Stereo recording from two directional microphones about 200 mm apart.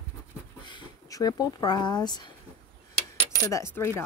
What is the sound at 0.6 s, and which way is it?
Speech, 20° left (ahead or behind).